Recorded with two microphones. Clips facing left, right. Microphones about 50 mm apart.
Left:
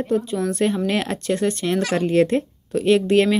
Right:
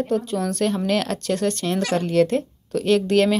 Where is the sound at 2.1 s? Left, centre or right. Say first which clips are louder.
Left 1 dB; left.